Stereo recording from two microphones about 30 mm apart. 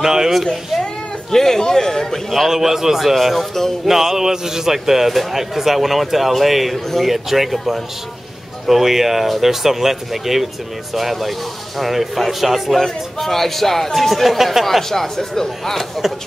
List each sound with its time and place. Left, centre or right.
0.0 s a man's voice: centre
1.3 s speech: centre
2.5 s a man's voice: centre
14.1 s speech: centre